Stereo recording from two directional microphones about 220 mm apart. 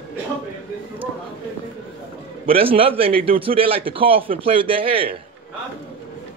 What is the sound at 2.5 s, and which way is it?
Speech, 25° right (ahead or behind).